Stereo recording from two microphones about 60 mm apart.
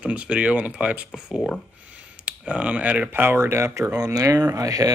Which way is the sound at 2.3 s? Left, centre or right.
Centre.